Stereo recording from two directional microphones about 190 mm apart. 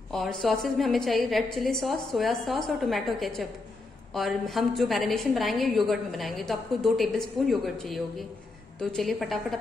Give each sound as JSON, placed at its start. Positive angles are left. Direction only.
{"t": 0.1, "sound": "a woman's voice", "side_deg": 0}